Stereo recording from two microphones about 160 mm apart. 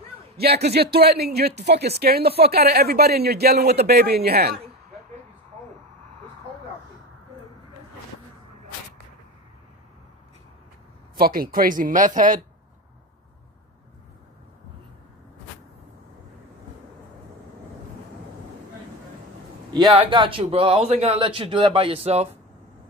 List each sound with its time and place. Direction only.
0.4 s speech: 80° right
11.1 s speech: 65° right (ahead or behind)
19.7 s a man's voice: 30° right (ahead or behind)